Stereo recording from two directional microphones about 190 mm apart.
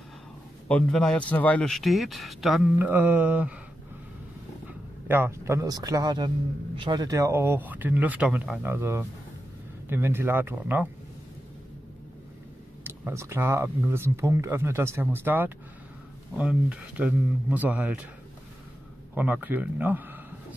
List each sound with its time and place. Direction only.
0.7 s speech: 5° left (ahead or behind)
5.0 s speech: 10° right (ahead or behind)
12.8 s speech: 15° right (ahead or behind)
19.1 s speech: 10° right (ahead or behind)